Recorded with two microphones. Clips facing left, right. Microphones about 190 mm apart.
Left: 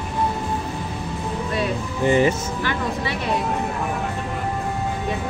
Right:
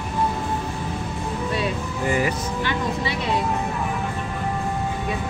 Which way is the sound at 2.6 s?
20° right (ahead or behind).